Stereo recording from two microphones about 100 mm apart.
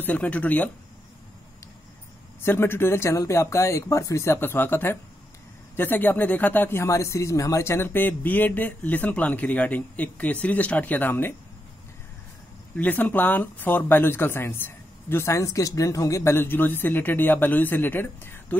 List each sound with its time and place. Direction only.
0.0 s speech: 15° left (ahead or behind)
2.4 s speech: 25° left (ahead or behind)
12.7 s speech: 15° left (ahead or behind)